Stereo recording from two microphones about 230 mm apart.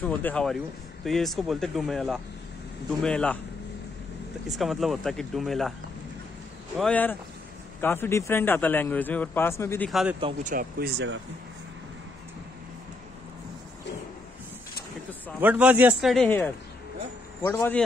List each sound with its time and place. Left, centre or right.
0.0 s speech: centre
4.5 s speech: centre
6.8 s speech: centre
9.8 s speech: centre
10.4 s speech: right
15.4 s speech: centre